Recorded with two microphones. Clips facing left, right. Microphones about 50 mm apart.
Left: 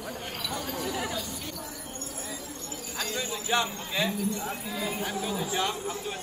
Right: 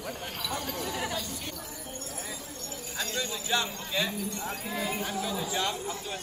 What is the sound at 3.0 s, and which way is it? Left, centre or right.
Jingle bell, centre.